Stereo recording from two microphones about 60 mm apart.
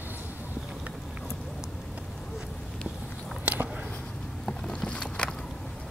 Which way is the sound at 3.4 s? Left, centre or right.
Right.